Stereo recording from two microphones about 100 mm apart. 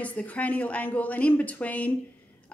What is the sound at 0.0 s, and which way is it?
A woman's voice, 15° left (ahead or behind).